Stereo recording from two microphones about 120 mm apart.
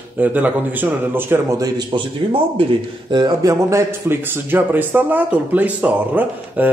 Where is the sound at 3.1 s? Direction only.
35° right (ahead or behind).